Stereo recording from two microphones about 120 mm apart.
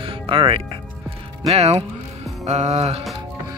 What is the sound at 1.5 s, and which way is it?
Speech, 60° right (ahead or behind).